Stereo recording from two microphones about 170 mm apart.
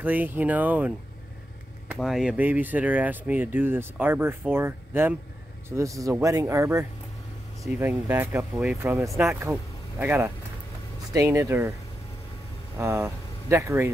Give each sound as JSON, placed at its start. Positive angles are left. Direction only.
{"t": 0.0, "sound": "speech", "side_deg": -10}
{"t": 2.0, "sound": "speech", "side_deg": -5}
{"t": 12.7, "sound": "speech", "side_deg": -15}